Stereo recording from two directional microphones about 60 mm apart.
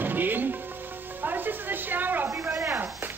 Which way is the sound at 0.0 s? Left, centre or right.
Right.